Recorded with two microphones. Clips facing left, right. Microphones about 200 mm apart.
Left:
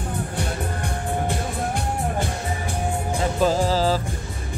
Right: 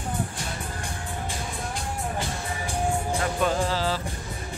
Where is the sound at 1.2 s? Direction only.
60° left (ahead or behind).